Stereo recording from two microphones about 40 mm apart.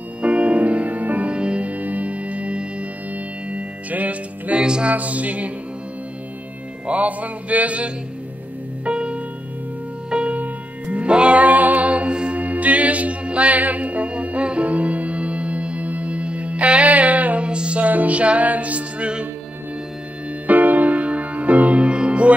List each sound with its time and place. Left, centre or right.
0.2 s music: right
1.3 s music: right
3.9 s music: right
4.6 s music: right
4.8 s music: right
6.9 s music: right
10.3 s music: right
11.4 s music: right
12.4 s music: right
17.5 s music: right
17.8 s music: right
20.4 s music: right